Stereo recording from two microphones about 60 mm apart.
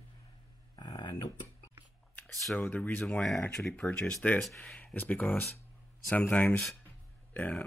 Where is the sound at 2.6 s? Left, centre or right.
Left.